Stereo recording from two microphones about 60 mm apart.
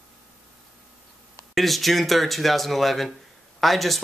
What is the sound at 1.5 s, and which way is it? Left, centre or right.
Speech, centre.